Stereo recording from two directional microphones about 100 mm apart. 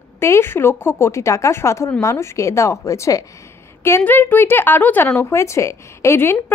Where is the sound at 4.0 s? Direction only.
20° left (ahead or behind).